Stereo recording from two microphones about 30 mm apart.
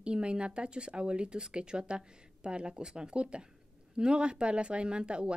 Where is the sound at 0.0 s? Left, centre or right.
Right.